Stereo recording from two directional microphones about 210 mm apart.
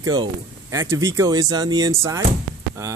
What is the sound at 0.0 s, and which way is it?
Speech, 20° right (ahead or behind).